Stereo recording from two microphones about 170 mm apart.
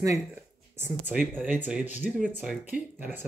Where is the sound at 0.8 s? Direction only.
10° right (ahead or behind).